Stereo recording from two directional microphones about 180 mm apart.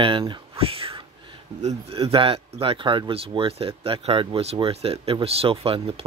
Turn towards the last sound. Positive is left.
turn(degrees=-30)  # may be behind; listen again after turning